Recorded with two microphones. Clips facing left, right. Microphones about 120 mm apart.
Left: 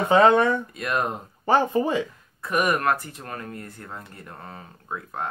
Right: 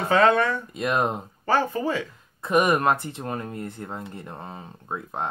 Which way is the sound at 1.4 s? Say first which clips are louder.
Left 3 dB; 20° left (ahead or behind).